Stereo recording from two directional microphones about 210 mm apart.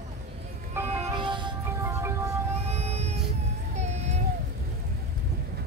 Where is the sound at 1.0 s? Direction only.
25° right (ahead or behind).